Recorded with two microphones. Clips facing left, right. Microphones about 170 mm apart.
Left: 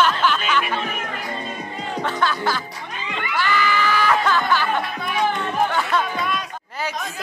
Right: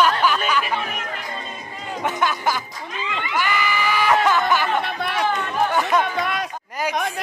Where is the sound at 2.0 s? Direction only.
15° right (ahead or behind).